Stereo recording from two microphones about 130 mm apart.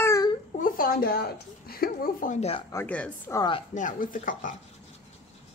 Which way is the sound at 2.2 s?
70° left (ahead or behind).